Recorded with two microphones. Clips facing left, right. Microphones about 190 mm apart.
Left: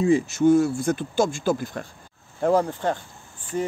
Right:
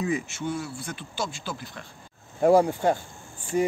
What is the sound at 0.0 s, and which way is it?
Speech, 30° left (ahead or behind).